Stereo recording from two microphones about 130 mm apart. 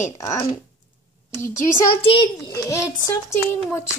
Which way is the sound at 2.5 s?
25° left (ahead or behind).